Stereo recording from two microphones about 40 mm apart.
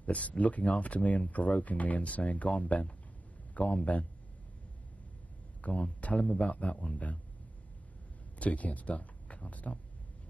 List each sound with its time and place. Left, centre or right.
0.0 s speech: left
5.6 s speech: left
8.4 s speech: left